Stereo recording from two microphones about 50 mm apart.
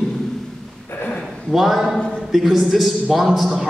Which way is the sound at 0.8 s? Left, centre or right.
Left.